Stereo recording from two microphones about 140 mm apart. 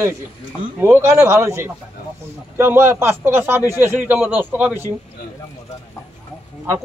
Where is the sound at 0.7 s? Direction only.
15° right (ahead or behind).